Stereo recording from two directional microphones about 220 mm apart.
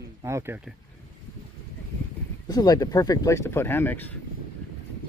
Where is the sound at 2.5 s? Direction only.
15° left (ahead or behind).